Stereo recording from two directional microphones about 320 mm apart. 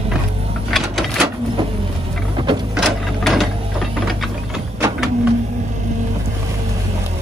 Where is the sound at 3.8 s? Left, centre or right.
Centre.